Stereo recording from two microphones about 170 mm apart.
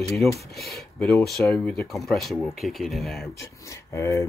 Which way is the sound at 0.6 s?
Centre (ahead or behind).